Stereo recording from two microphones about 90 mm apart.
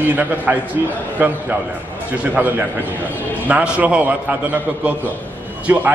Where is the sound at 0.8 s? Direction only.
30° right (ahead or behind).